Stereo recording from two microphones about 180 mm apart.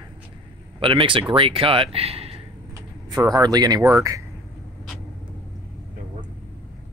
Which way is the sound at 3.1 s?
20° right (ahead or behind).